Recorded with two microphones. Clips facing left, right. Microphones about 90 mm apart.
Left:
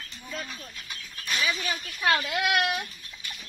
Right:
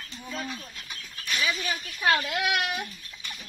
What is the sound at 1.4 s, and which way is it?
Speech, centre (ahead or behind).